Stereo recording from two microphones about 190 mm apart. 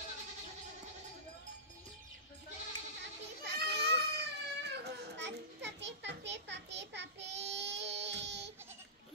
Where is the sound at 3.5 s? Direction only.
60° right (ahead or behind).